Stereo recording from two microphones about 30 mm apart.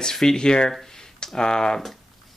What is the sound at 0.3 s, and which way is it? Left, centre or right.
Speech, left.